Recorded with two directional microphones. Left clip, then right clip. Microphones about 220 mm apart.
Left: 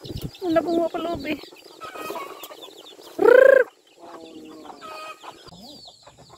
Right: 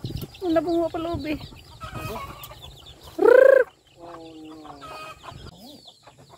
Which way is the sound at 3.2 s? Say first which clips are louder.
Left 1 dB; 5° right (ahead or behind).